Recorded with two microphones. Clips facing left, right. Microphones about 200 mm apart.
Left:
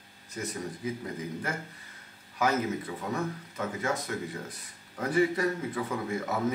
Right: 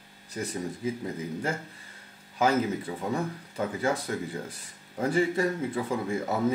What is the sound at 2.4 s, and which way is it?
Speech, 30° right (ahead or behind).